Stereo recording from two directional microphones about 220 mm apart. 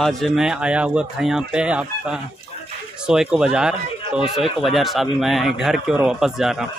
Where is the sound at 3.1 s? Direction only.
5° right (ahead or behind).